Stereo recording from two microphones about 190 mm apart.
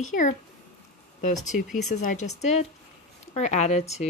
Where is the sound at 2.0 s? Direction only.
40° left (ahead or behind).